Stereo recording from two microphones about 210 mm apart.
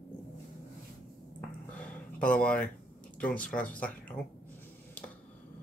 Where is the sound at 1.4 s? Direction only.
5° left (ahead or behind).